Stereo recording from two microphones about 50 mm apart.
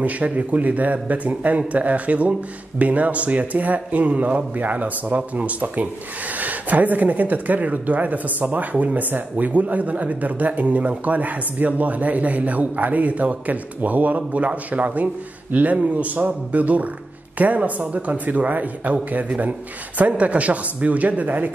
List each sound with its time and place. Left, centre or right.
0.0 s a man's voice: right